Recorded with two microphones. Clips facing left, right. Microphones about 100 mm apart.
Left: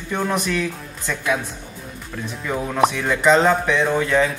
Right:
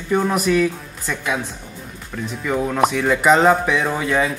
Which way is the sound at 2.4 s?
5° right (ahead or behind).